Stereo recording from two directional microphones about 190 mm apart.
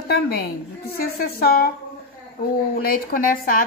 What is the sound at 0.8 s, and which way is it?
Speech, 50° left (ahead or behind).